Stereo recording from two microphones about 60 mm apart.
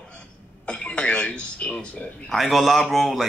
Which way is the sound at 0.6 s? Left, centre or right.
Centre.